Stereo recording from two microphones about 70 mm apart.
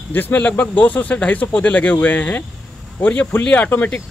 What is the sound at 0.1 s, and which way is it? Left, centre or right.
Speech, left.